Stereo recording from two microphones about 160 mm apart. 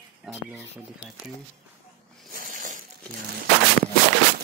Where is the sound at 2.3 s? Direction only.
55° right (ahead or behind).